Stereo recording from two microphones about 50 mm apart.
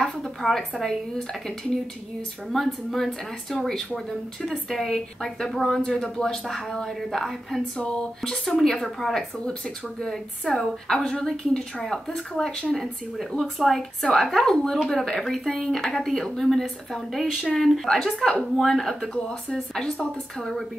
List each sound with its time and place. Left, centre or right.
0.0 s a woman's voice: centre
0.5 s a woman's voice: centre
2.5 s a woman's voice: centre